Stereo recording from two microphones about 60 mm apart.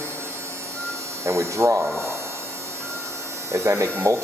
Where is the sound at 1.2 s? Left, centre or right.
Right.